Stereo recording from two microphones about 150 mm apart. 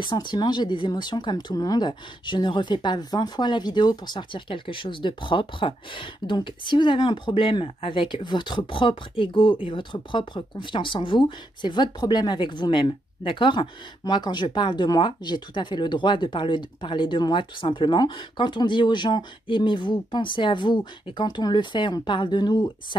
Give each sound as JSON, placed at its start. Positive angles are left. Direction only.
{"t": 0.0, "sound": "speech", "side_deg": 30}